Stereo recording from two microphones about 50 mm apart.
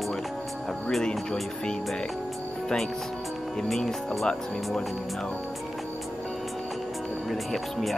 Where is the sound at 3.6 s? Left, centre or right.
Centre.